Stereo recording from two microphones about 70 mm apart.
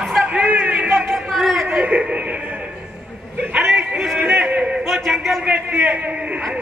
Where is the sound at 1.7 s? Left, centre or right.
Right.